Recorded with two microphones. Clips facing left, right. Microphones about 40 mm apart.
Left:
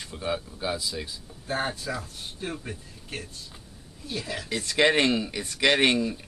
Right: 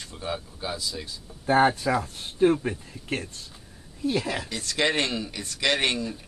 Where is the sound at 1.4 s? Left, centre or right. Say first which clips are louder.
Right 9 dB; right.